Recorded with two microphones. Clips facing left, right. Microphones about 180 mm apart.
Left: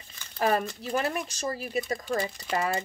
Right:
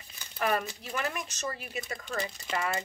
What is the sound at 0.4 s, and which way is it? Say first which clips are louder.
Speech: left 4 dB; 30° left (ahead or behind).